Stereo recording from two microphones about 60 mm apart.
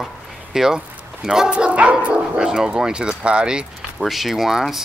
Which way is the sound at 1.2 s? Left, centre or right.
Centre.